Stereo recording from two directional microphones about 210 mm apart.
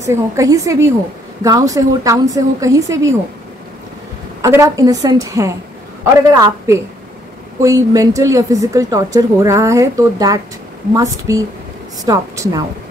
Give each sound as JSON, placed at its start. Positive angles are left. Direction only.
{"t": 0.0, "sound": "speech", "side_deg": -15}
{"t": 4.4, "sound": "speech", "side_deg": -15}